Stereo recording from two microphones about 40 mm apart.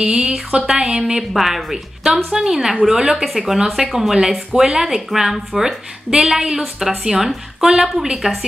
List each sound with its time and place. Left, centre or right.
0.0 s speech: right
1.3 s speech: centre